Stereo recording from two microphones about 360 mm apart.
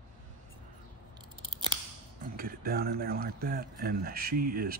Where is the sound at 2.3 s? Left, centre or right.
Right.